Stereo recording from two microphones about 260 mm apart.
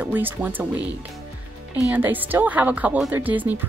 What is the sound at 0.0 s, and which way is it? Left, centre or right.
Speech, centre.